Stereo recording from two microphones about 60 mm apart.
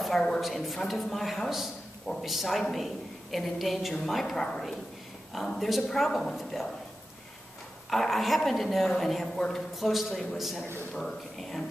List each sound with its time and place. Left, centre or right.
0.4 s a man's voice: centre
7.9 s a man's voice: centre